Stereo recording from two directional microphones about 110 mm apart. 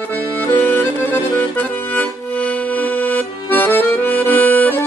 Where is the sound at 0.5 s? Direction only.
15° left (ahead or behind).